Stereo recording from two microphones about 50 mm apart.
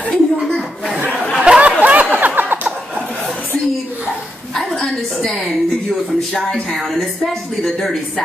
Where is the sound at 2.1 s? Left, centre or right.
Right.